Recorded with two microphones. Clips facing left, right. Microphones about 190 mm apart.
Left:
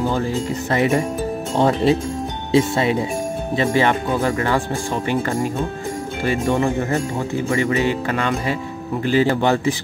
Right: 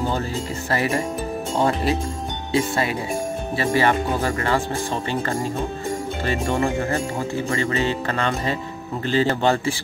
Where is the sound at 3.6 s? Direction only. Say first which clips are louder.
Left 2 dB; 15° left (ahead or behind).